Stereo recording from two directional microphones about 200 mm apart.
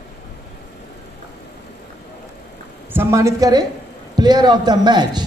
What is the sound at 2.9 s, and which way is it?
A woman's voice, 15° right (ahead or behind).